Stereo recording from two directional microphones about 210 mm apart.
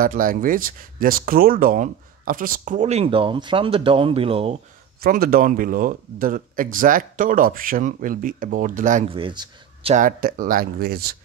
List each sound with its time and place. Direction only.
0.0 s speech: 40° right (ahead or behind)
5.0 s speech: 45° right (ahead or behind)
9.1 s speech: 25° right (ahead or behind)
9.9 s speech: 40° right (ahead or behind)